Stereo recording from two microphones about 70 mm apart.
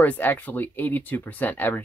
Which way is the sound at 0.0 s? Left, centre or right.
Left.